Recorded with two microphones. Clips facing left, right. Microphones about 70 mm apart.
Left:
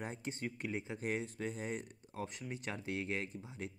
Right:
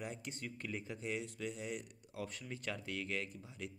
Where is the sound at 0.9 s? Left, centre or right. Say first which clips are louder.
Left 3 dB; left.